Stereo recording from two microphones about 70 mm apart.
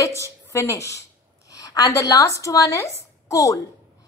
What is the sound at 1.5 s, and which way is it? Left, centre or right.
A woman's voice, left.